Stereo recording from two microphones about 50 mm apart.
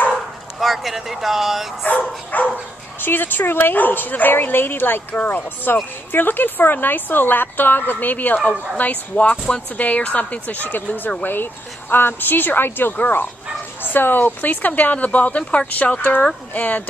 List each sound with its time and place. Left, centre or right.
0.6 s speech: centre
1.8 s speech: left
5.1 s speech: left